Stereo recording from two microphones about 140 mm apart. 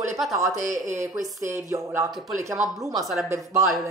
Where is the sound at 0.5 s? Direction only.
65° right (ahead or behind).